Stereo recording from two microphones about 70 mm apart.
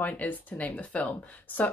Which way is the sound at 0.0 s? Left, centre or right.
Left.